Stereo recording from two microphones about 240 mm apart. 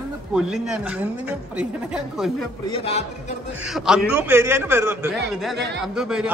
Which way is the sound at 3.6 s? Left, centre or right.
Centre.